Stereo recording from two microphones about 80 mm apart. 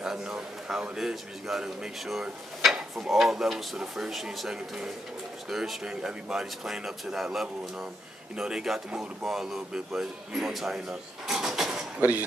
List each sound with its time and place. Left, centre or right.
0.0 s a man's voice: centre
12.0 s speech: right